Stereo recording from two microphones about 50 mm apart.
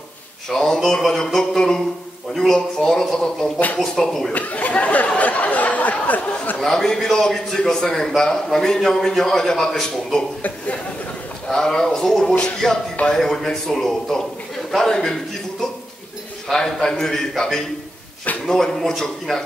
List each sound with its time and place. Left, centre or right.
0.5 s a man's voice: centre
3.5 s speech: left
3.8 s a man's voice: centre
4.3 s a sound: left
6.6 s a man's voice: centre
11.4 s a man's voice: centre
16.4 s a man's voice: centre